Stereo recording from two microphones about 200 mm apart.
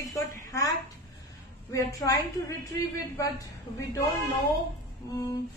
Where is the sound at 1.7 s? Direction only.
15° left (ahead or behind).